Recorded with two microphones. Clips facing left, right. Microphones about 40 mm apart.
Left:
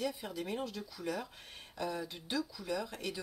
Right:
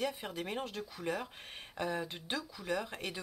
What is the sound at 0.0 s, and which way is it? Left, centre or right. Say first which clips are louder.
Speech: right 1 dB; right.